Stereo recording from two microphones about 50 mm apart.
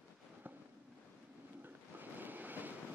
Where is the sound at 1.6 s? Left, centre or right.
Right.